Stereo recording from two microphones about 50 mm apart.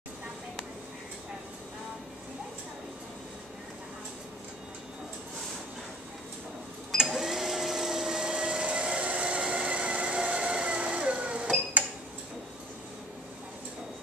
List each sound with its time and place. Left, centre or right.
7.0 s vacuum cleaner: centre; by 11.5 s right